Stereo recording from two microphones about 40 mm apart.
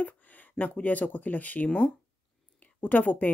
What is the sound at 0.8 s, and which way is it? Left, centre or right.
Speech, left.